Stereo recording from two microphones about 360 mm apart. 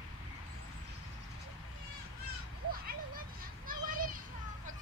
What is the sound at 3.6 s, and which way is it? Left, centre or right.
Children playing, right.